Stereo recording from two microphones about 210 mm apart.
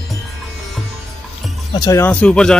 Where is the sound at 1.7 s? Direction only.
15° left (ahead or behind).